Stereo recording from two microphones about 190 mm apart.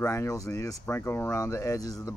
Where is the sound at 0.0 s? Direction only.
15° left (ahead or behind).